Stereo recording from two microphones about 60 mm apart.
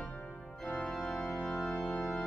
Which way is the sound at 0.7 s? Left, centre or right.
Centre.